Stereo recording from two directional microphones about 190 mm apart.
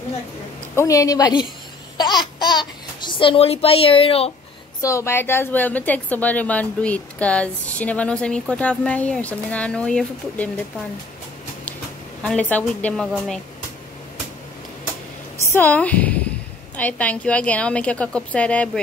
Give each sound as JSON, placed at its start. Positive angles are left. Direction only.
{"t": 0.7, "sound": "a woman's voice", "side_deg": 15}
{"t": 2.0, "sound": "babbling", "side_deg": 20}
{"t": 4.8, "sound": "a woman's voice", "side_deg": 15}
{"t": 12.2, "sound": "a woman's voice", "side_deg": 5}
{"t": 15.3, "sound": "a woman's voice", "side_deg": 15}